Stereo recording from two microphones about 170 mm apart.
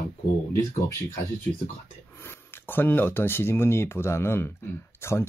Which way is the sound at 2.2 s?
10° left (ahead or behind).